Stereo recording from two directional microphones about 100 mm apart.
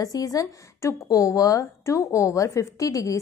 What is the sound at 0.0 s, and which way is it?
A woman's voice, 35° left (ahead or behind).